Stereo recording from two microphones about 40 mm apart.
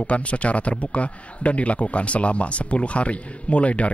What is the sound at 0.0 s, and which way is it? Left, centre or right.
A man's voice, left.